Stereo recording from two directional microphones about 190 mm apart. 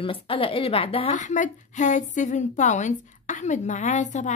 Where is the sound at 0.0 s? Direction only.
30° left (ahead or behind).